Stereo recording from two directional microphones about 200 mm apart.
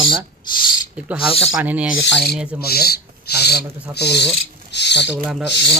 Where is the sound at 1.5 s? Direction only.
5° right (ahead or behind).